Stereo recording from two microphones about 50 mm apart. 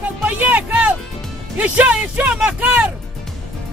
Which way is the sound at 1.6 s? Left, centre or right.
Right.